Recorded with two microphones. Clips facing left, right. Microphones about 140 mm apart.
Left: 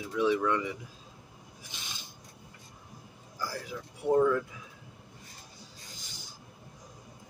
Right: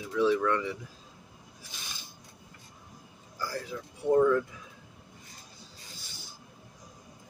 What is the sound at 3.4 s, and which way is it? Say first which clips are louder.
Speech: right 2 dB; 10° left (ahead or behind).